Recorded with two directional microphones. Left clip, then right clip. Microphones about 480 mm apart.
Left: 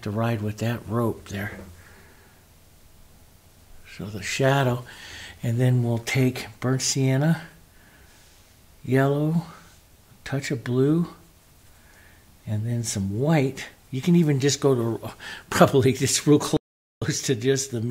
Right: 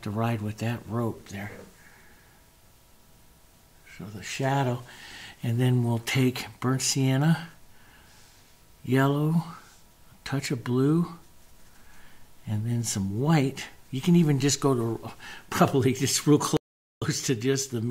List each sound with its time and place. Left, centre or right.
0.0 s speech: centre; by 1.5 s left
3.8 s speech: left; by 7.4 s centre
8.8 s speech: centre
12.4 s speech: centre